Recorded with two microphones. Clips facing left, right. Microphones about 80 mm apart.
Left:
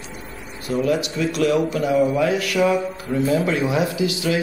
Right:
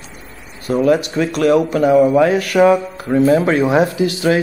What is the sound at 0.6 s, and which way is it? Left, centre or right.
Speech, right.